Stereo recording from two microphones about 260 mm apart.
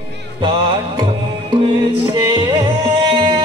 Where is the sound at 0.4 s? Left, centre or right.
Centre.